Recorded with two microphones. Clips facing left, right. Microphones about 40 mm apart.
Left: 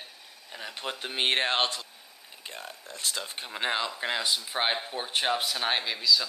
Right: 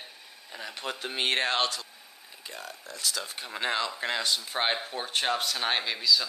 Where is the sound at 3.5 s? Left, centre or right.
Centre.